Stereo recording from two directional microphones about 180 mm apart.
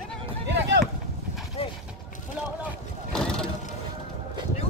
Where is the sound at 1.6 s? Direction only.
30° left (ahead or behind).